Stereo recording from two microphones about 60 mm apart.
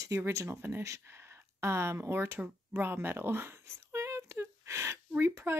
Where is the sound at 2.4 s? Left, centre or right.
Right.